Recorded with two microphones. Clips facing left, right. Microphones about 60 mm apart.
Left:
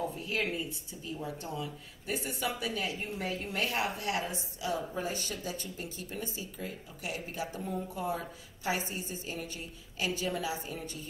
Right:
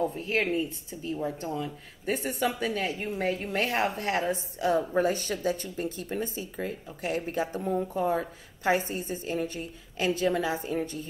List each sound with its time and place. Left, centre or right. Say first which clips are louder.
0.0 s a woman's voice: right 6 dB; right